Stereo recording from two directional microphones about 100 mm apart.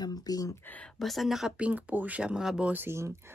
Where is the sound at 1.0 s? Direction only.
Centre (ahead or behind).